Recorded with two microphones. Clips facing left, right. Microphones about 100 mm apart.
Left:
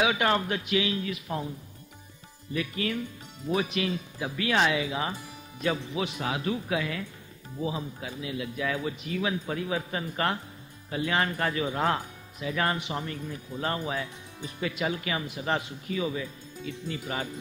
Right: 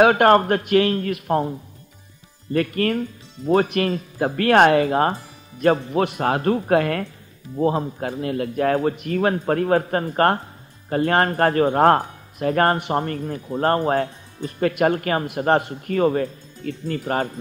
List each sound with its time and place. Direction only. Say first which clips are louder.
0.0 s speech: right 11 dB; 55° right (ahead or behind)
2.5 s speech: right 10 dB; 55° right (ahead or behind)